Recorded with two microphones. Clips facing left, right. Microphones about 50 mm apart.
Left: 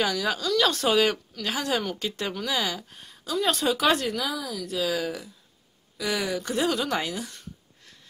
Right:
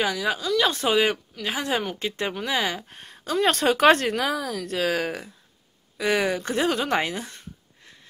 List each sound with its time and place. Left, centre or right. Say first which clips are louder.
0.0 s speech: right 1 dB; centre